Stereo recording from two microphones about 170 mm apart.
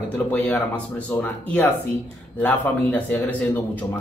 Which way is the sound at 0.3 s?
10° left (ahead or behind).